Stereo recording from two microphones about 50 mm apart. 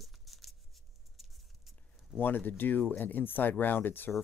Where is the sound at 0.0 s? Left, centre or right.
Centre.